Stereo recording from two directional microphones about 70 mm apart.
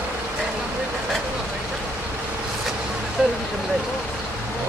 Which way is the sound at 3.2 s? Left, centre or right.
Centre.